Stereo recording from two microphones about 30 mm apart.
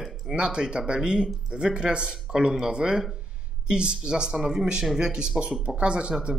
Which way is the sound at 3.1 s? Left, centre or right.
Right.